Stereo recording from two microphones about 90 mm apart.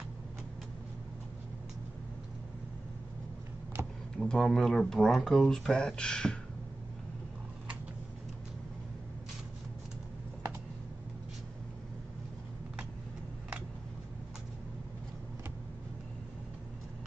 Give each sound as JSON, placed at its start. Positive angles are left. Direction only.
{"t": 3.8, "sound": "vehicle", "side_deg": -30}
{"t": 4.2, "sound": "speech", "side_deg": 5}